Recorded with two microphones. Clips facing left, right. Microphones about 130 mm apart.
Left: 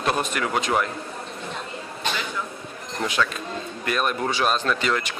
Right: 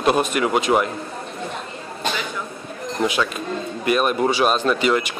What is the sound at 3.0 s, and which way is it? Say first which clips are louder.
Speech: right 3 dB; 15° right (ahead or behind).